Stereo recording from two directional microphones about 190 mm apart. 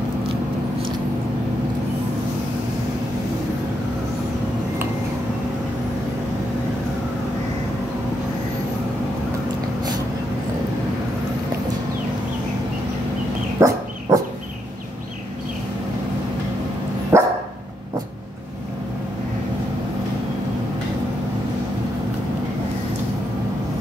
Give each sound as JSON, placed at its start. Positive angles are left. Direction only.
{"t": 13.6, "sound": "dog", "side_deg": -15}
{"t": 17.1, "sound": "dog", "side_deg": -10}